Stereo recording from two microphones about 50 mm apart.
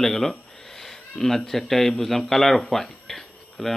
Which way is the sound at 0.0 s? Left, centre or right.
Centre.